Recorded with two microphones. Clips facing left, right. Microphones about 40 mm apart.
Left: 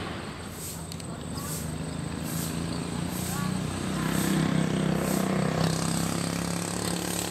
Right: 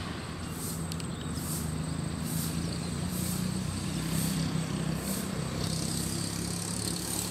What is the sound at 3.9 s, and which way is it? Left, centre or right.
Vehicle, left.